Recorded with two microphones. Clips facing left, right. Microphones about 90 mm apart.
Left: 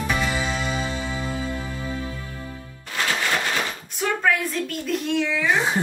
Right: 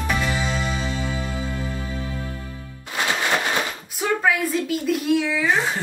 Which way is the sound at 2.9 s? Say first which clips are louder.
Right 2 dB; 20° right (ahead or behind).